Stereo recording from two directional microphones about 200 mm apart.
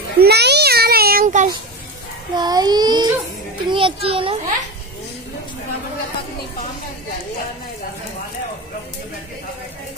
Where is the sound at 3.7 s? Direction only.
25° right (ahead or behind).